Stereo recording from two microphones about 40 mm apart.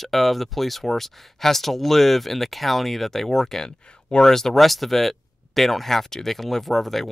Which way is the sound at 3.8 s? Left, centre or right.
Left.